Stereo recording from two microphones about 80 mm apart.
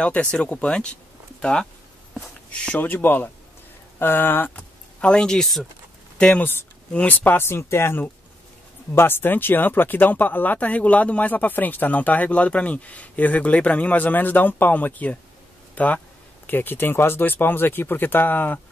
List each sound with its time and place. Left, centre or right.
0.0 s speech: centre
2.1 s a sound: centre
2.8 s speech: left
5.0 s speech: centre; by 18.6 s left